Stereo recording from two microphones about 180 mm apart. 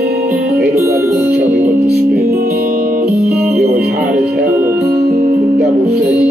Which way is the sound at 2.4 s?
55° right (ahead or behind).